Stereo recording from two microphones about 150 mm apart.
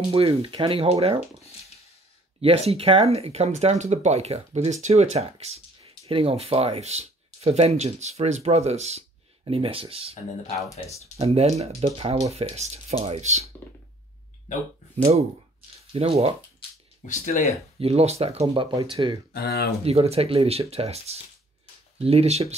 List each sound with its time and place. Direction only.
0.1 s speech: 40° right (ahead or behind)
2.4 s speech: 40° right (ahead or behind)
11.1 s speech: 45° right (ahead or behind)
15.0 s speech: 45° right (ahead or behind)
17.0 s speech: 55° left (ahead or behind)
17.7 s speech: 40° right (ahead or behind)
18.5 s speech: 30° right (ahead or behind)
19.3 s speech: 90° left
19.8 s speech: 45° right (ahead or behind)